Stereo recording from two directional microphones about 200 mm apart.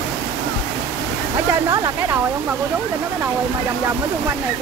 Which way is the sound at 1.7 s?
20° right (ahead or behind).